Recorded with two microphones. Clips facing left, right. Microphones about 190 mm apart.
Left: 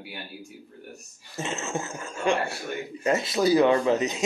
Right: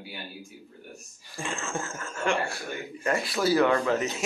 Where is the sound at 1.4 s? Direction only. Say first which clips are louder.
Left 3 dB; 20° left (ahead or behind).